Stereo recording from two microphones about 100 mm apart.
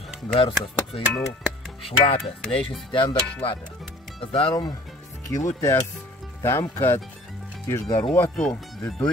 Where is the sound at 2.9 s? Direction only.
55° left (ahead or behind).